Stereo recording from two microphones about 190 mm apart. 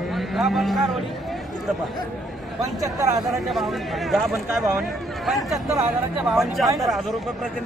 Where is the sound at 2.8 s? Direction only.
15° right (ahead or behind).